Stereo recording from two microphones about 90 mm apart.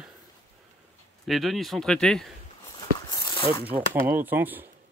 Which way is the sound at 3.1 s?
45° left (ahead or behind).